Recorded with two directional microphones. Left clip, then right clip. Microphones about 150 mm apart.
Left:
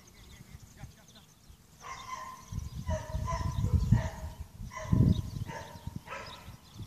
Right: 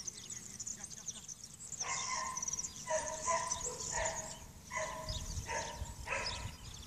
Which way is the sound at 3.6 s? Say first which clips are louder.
Even; 60° left (ahead or behind).